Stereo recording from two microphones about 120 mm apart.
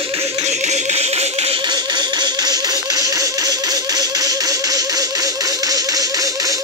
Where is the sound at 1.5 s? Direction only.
35° right (ahead or behind).